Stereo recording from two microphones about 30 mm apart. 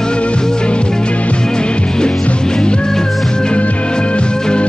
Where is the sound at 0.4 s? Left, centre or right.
Left.